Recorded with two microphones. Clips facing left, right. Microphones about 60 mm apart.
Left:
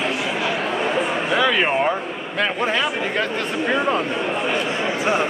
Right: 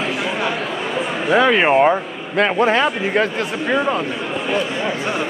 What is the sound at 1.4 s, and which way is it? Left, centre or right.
Speech, right.